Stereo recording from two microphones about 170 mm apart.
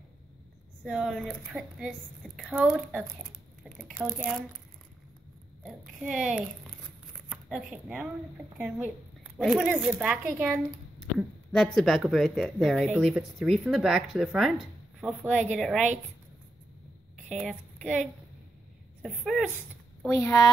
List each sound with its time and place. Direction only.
0.8 s a woman's voice: centre (ahead or behind)
3.6 s squish: centre (ahead or behind)
4.0 s a woman's voice: 5° right (ahead or behind)
5.6 s a child's voice: centre (ahead or behind)
11.0 s a woman's voice: centre (ahead or behind)
17.4 s a woman's voice: 5° left (ahead or behind)
19.0 s a woman's voice: centre (ahead or behind)
20.1 s speech: 15° left (ahead or behind)